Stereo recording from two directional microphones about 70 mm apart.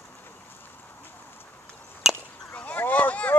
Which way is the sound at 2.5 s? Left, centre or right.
Left.